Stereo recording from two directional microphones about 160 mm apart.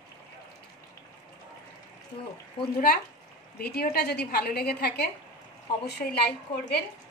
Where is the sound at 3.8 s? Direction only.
80° left.